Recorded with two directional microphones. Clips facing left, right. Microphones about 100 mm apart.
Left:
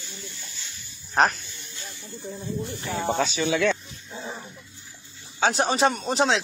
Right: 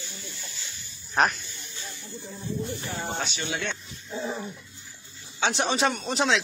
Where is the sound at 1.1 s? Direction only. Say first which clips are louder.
Left 2 dB; 35° left (ahead or behind).